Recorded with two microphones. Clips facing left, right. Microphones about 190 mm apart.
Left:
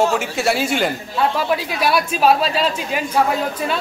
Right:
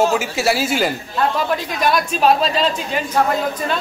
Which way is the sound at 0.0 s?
Centre (ahead or behind).